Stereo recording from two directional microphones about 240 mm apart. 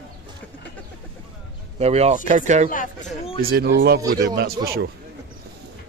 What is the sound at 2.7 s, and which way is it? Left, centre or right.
Speech, left.